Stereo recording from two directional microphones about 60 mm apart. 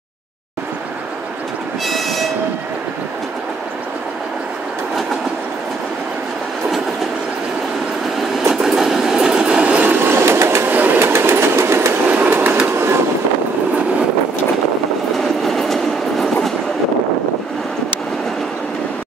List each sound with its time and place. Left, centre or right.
1.9 s train: centre
8.5 s train: centre
9.8 s train: right
10.7 s train: right
12.1 s train: right
15.1 s train: centre